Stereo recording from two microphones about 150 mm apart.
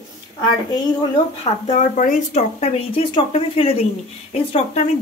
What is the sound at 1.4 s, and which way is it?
Speech, 55° left (ahead or behind).